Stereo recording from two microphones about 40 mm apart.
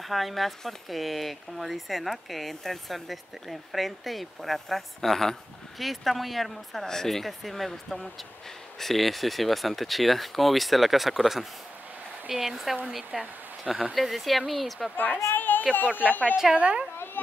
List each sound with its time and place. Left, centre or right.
0.1 s speech: centre
13.9 s speech: centre
15.0 s a sound: left
16.1 s a woman's voice: left
16.5 s a woman's voice: right
16.9 s a sound: left